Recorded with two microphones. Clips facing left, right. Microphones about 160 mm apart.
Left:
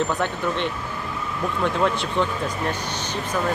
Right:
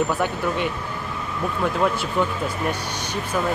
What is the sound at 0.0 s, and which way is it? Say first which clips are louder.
Speech: right 1 dB; 10° right (ahead or behind).